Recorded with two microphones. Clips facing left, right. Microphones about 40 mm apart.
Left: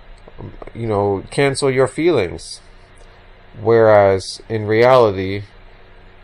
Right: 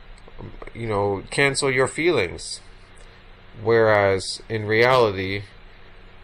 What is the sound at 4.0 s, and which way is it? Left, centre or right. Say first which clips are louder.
Speech: left 7 dB; right.